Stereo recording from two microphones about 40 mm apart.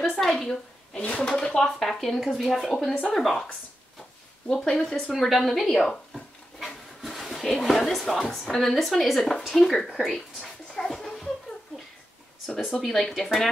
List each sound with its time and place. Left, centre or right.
0.1 s a sound: centre
0.9 s speech: left
1.2 s speech: left
1.7 s speech: centre
4.5 s speech: centre
5.1 s speech: centre
7.1 s speech: centre
10.8 s a sound: centre
12.8 s speech: centre